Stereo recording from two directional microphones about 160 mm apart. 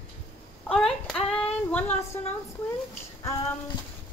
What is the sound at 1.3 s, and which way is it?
Female singing, 10° left (ahead or behind).